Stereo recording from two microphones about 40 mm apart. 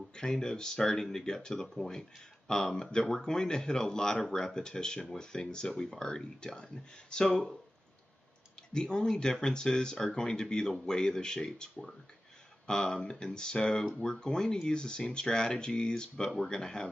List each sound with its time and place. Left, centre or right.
0.1 s speech: centre
7.2 s speech: centre
8.7 s speech: centre